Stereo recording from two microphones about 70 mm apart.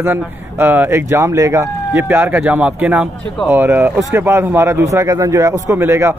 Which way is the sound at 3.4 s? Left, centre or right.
Right.